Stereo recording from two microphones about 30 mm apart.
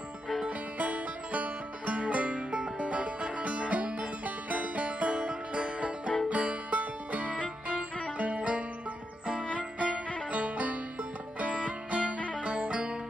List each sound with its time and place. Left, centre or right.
0.5 s music: right
2.0 s music: right
10.3 s music: right